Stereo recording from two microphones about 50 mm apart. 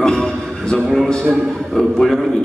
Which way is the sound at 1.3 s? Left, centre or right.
Centre.